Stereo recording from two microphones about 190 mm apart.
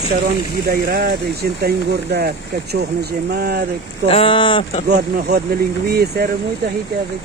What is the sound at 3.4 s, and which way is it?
Speech, 55° right (ahead or behind).